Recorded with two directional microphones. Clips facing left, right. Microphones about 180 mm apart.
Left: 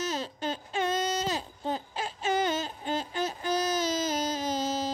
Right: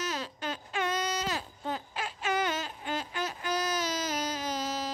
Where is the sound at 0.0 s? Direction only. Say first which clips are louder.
Left 3 dB; 25° left (ahead or behind).